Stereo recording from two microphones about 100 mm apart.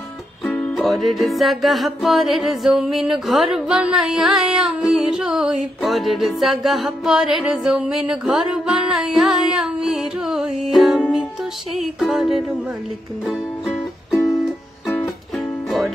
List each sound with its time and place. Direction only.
0.5 s music: 15° left (ahead or behind)
0.7 s music: centre (ahead or behind)
15.3 s music: centre (ahead or behind)